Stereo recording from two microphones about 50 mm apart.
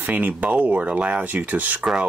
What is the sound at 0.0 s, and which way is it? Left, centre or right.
Speech, right.